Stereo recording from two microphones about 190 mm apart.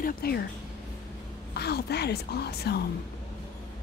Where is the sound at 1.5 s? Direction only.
60° left (ahead or behind).